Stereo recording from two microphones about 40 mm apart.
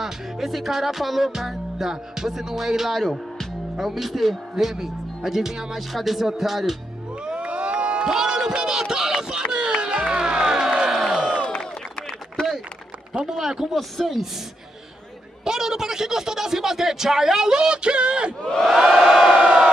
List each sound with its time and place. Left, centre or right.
0.0 s music: centre
3.7 s speech: centre
7.2 s crowd: right
8.1 s a man's voice: centre
9.5 s a sound: centre
11.1 s crowd: right
13.1 s a man's voice: centre
13.4 s speech: centre
15.4 s speech: centre
18.4 s crowd: centre
18.7 s speech: centre
19.3 s crowd: centre